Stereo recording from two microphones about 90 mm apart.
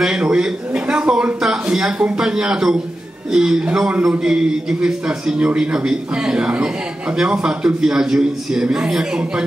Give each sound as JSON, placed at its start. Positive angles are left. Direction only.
{"t": 0.0, "sound": "a man's voice", "side_deg": -10}